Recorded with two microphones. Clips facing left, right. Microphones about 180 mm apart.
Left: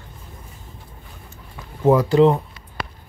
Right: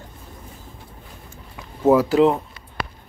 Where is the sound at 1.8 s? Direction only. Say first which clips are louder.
Left 1 dB; 5° right (ahead or behind).